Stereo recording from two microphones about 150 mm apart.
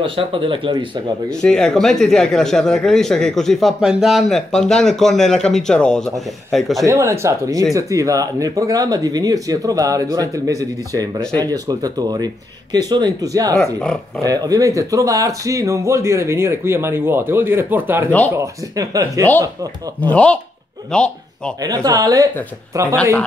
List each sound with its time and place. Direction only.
0.0 s speech: 35° right (ahead or behind)
1.3 s speech: 5° left (ahead or behind)
6.9 s speech: 20° right (ahead or behind)
20.0 s speech: 10° left (ahead or behind)
21.6 s speech: 25° right (ahead or behind)